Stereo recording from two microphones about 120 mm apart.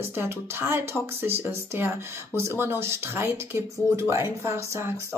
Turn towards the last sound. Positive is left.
turn(degrees=-20)  # may be behind; listen again after turning